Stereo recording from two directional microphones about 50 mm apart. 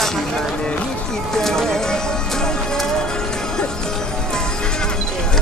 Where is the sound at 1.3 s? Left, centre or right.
Centre.